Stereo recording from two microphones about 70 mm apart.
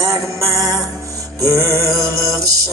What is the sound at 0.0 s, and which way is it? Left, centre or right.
Music, right.